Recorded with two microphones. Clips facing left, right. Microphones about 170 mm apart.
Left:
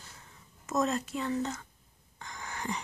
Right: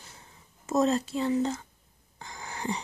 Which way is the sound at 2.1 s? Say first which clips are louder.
Right 1 dB; 30° right (ahead or behind).